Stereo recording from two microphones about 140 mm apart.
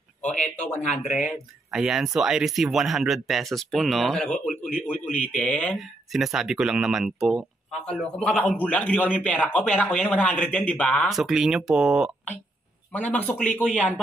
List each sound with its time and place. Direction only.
0.3 s speech: 60° left (ahead or behind)
1.1 s speech: 5° right (ahead or behind)
5.0 s speech: 60° left (ahead or behind)
5.4 s speech: 5° left (ahead or behind)
8.0 s speech: 5° left (ahead or behind)
12.9 s speech: 10° left (ahead or behind)